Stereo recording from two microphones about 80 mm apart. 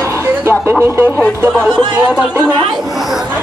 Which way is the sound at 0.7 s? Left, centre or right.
Right.